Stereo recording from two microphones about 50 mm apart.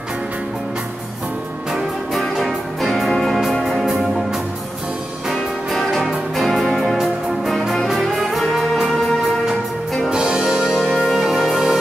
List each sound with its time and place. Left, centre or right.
1.7 s music: centre
10.0 s music: centre